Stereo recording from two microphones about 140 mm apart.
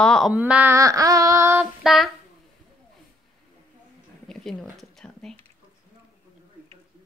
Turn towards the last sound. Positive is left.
turn(degrees=5)  # may be behind; listen again after turning